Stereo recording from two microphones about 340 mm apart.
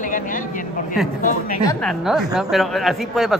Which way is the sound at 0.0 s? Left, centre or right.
Left.